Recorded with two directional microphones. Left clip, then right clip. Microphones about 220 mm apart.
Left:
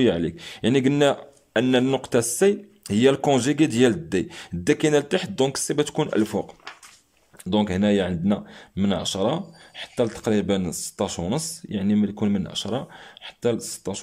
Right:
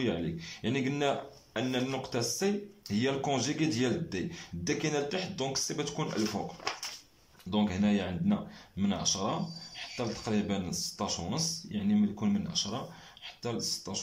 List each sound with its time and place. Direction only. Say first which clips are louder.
0.0 s speech: left 12 dB; 55° left (ahead or behind)
7.4 s speech: left 9 dB; 55° left (ahead or behind)